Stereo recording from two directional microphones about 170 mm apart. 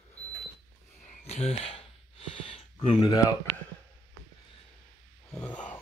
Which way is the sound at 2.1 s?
35° left (ahead or behind).